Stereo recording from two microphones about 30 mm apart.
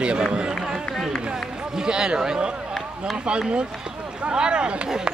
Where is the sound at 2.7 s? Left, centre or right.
Centre.